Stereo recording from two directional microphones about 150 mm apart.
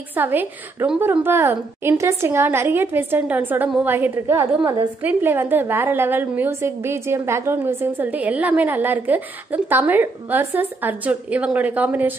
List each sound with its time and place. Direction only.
0.1 s a woman's voice: 10° right (ahead or behind)